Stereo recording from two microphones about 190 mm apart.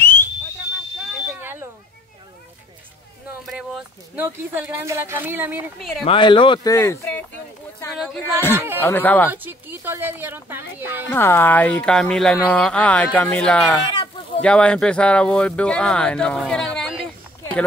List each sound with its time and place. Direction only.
0.0 s a sound: 10° left (ahead or behind)
1.1 s smoke detector: 10° right (ahead or behind)
3.4 s speech: 5° right (ahead or behind)
6.0 s speech: 25° left (ahead or behind)
8.5 s speech: 10° right (ahead or behind)
8.8 s speech: 10° left (ahead or behind)
9.3 s speech: 10° right (ahead or behind)
11.1 s speech: 10° left (ahead or behind)
17.4 s a sound: 5° left (ahead or behind)